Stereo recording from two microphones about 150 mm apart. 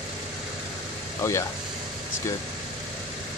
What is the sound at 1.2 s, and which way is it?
Speech, 20° left (ahead or behind).